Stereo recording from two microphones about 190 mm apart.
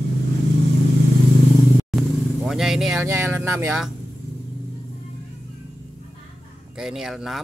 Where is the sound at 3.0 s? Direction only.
15° right (ahead or behind).